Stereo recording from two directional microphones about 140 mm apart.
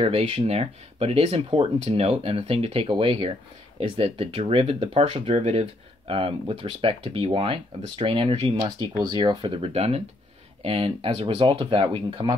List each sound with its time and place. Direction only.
0.0 s speech: 45° right (ahead or behind)
9.8 s speech: 45° right (ahead or behind)